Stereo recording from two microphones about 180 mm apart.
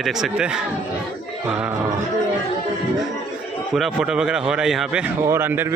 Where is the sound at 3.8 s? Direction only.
Centre (ahead or behind).